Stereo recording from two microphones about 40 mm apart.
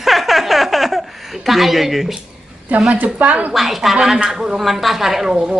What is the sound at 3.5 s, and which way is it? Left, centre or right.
A woman's voice, centre.